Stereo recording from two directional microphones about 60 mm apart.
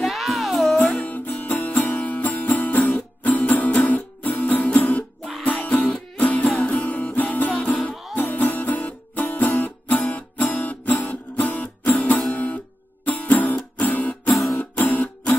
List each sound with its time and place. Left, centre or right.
0.0 s music: centre
0.7 s music: centre
1.0 s music: left
8.1 s music: left
14.3 s music: centre
14.6 s music: left